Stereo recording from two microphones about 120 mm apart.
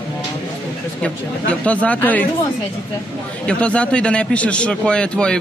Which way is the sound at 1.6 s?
10° left (ahead or behind).